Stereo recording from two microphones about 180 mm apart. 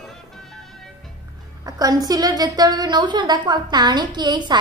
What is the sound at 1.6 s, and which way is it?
A woman's voice, 20° right (ahead or behind).